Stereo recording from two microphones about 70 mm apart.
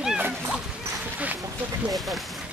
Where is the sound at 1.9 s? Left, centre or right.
Centre.